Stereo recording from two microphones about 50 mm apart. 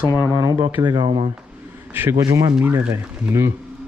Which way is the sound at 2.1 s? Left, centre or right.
Right.